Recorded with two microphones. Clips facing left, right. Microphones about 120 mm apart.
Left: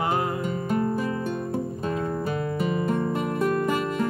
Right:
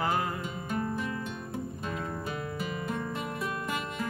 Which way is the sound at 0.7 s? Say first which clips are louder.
Left 7 dB; 40° left (ahead or behind).